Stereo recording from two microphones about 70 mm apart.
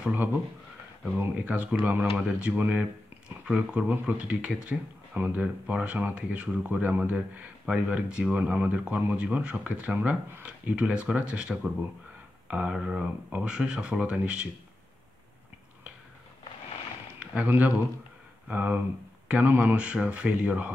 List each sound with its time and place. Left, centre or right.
0.1 s speech: right
1.4 s speech: centre
17.2 s a sound: centre
17.5 s speech: right